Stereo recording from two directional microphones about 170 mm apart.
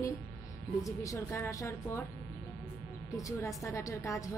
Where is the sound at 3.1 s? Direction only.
20° left (ahead or behind).